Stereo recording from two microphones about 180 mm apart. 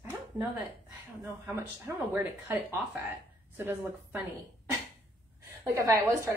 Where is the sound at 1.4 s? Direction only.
15° right (ahead or behind).